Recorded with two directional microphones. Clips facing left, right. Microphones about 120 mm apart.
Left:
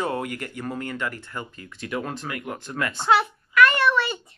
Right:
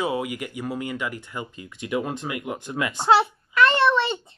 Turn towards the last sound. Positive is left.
turn(degrees=-25)  # may be behind; listen again after turning